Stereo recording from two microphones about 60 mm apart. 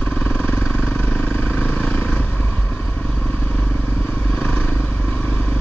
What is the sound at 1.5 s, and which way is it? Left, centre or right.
Vehicle, centre.